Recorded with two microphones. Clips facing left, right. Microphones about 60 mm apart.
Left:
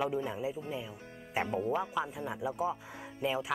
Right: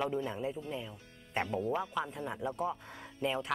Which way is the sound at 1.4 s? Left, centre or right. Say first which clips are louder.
Left 2 dB; left.